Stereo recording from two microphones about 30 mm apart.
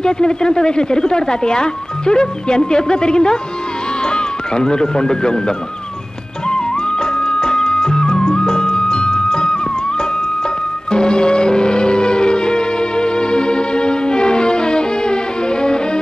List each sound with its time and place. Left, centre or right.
0.0 s speech: left
6.5 s music: left
10.9 s music: left